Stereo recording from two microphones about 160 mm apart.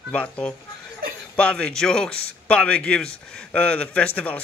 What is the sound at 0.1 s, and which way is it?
A man's voice, 5° left (ahead or behind).